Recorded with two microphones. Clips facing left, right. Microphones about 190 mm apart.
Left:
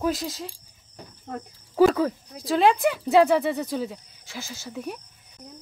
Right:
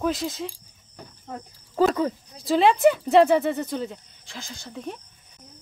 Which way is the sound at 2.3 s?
Centre (ahead or behind).